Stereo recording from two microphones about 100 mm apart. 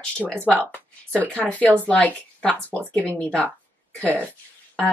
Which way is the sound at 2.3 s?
15° left (ahead or behind).